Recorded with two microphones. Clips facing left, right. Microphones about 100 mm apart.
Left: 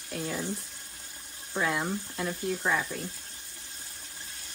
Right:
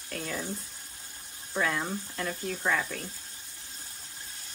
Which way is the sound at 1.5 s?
20° left (ahead or behind).